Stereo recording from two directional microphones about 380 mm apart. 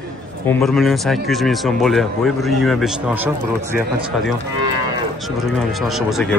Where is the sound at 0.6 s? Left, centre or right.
Centre.